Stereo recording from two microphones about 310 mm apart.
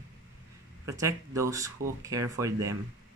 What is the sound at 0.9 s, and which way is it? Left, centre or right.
Speech, centre.